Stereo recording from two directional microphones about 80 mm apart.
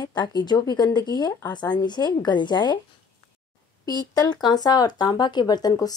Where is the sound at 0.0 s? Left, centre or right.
Left.